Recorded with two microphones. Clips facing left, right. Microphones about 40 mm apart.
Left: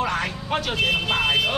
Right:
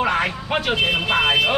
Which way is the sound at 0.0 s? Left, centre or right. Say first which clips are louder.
Right 4 dB; right.